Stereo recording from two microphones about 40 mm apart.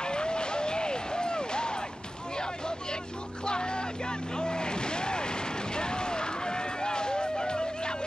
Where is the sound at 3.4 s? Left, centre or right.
Left.